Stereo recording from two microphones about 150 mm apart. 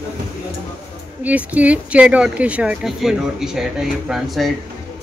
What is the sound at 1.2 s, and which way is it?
Speech, 10° right (ahead or behind).